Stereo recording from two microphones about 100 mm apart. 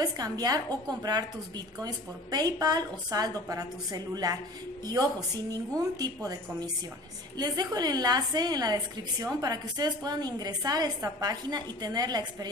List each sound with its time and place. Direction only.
0.0 s a woman's voice: 40° right (ahead or behind)
5.8 s a woman's voice: 40° right (ahead or behind)